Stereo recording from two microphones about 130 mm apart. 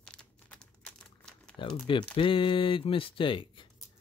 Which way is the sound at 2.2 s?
40° left (ahead or behind).